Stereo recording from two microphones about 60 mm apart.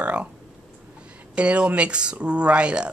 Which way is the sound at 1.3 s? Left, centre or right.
Centre.